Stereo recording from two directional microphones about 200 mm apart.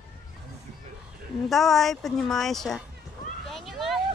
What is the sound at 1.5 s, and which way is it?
Speech, centre (ahead or behind).